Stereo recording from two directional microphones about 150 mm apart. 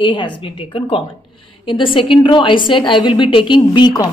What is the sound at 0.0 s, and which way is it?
A woman's voice, 30° left (ahead or behind).